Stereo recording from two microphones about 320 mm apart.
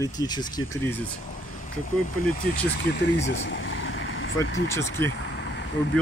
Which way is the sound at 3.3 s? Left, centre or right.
Left.